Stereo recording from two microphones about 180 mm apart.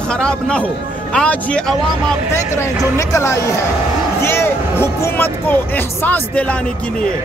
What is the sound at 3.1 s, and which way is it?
A man's voice, 15° left (ahead or behind).